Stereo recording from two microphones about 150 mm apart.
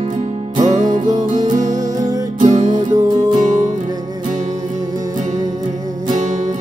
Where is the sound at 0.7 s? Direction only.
55° right (ahead or behind).